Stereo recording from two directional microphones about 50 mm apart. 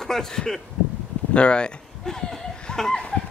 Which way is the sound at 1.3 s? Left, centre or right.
Left.